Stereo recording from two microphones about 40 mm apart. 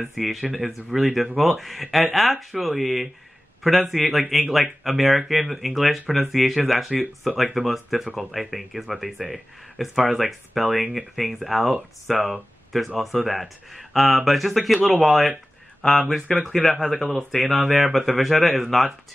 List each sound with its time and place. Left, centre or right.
0.1 s speech: centre
15.8 s speech: centre
16.3 s speech: centre